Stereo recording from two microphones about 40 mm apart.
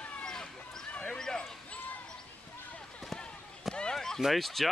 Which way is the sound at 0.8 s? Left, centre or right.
Left.